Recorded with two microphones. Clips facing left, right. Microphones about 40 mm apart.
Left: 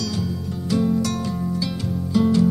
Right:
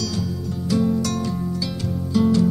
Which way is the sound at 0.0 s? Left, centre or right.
Centre.